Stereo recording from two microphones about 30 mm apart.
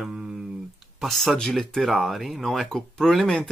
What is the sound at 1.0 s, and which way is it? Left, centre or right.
Speech, centre.